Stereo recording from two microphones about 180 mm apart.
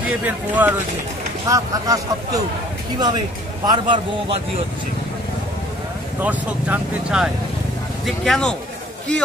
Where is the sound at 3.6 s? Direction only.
25° right (ahead or behind).